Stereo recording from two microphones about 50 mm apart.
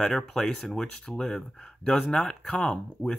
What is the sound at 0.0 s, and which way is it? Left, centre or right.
Speech, centre.